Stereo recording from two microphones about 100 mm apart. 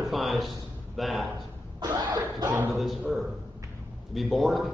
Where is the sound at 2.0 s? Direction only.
40° right (ahead or behind).